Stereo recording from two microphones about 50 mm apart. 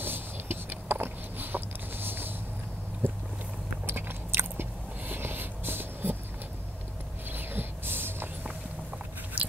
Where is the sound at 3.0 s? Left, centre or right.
Right.